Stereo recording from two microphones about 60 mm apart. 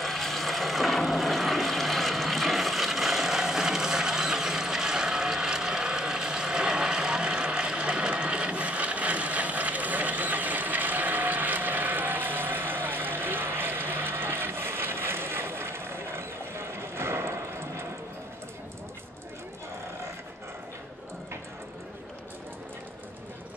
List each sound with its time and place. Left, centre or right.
0.0 s vehicle: centre; by 17.8 s right